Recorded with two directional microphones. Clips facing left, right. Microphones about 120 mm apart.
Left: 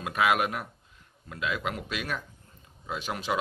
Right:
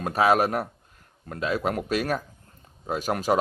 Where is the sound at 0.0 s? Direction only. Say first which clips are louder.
Right 5 dB; 35° right (ahead or behind).